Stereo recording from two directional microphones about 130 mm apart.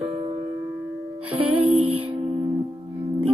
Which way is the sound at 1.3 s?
45° right (ahead or behind).